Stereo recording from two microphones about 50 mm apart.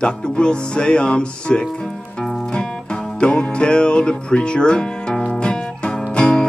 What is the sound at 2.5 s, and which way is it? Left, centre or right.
Music, centre.